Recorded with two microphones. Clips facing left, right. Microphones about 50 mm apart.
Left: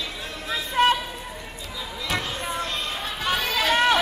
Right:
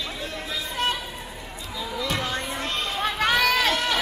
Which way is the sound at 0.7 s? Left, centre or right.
Left.